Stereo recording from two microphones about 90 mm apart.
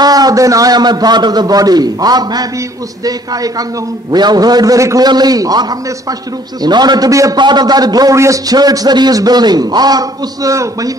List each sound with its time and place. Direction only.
0.0 s a man's voice: 45° right (ahead or behind)
7.3 s a man's voice: 55° right (ahead or behind); by 10.9 s 40° right (ahead or behind)